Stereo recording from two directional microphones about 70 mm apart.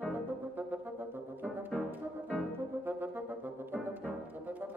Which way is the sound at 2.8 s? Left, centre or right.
Right.